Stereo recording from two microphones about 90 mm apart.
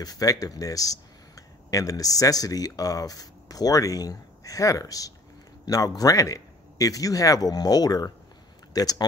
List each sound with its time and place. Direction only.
0.0 s speech: 45° left (ahead or behind)